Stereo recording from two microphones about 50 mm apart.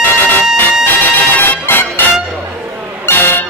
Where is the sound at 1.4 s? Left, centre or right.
Left.